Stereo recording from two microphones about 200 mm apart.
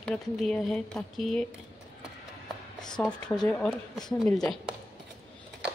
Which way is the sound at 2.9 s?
Centre (ahead or behind).